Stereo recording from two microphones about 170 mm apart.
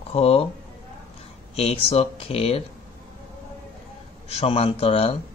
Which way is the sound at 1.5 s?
35° left (ahead or behind).